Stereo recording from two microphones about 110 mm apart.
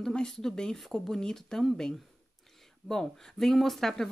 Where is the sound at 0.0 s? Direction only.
5° left (ahead or behind).